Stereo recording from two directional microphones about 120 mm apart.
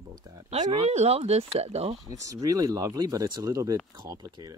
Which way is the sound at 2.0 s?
25° right (ahead or behind).